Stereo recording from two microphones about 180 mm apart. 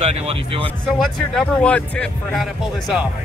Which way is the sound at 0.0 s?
35° right (ahead or behind).